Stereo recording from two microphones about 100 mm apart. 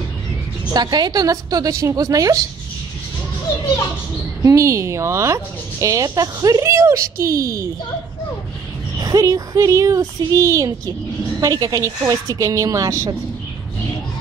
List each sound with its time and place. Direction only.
0.7 s speech: 45° right (ahead or behind)
4.4 s speech: 35° right (ahead or behind)
9.0 s speech: 35° right (ahead or behind)